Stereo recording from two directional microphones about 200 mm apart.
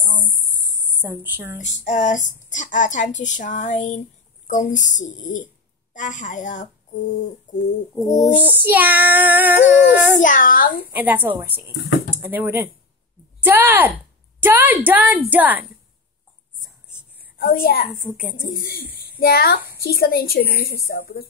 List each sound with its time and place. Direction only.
1.1 s child singing: 10° right (ahead or behind)
1.6 s speech: 35° left (ahead or behind)
7.5 s a sound: 40° left (ahead or behind)
8.5 s child singing: 10° right (ahead or behind)
10.2 s a child's voice: 40° left (ahead or behind)
10.9 s child singing: 10° right (ahead or behind)
17.4 s a child's voice: 45° left (ahead or behind)
18.0 s a woman's voice: 5° right (ahead or behind)
18.5 s a child's voice: 50° left (ahead or behind)